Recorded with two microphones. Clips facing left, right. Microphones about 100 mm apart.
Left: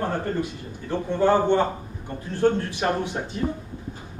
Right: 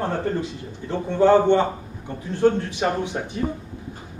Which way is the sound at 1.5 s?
20° right (ahead or behind).